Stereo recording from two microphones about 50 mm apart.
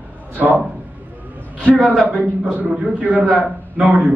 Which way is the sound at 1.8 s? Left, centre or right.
Right.